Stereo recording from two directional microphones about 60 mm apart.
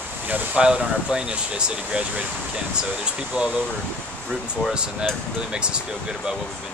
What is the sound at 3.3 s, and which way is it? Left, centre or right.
Speech, centre.